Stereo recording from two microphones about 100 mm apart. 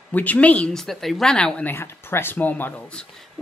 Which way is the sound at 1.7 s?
25° left (ahead or behind).